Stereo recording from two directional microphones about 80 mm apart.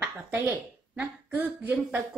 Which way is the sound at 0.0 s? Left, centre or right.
Right.